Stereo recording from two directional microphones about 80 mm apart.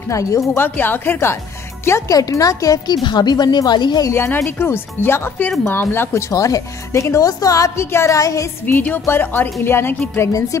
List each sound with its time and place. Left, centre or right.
0.1 s a woman's voice: left
0.6 s a woman's voice: left
2.1 s a woman's voice: left
3.0 s speech: left
4.1 s a woman's voice: left
6.3 s a woman's voice: left
8.6 s a woman's voice: left